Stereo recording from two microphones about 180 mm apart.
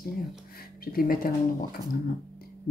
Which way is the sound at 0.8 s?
55° left (ahead or behind).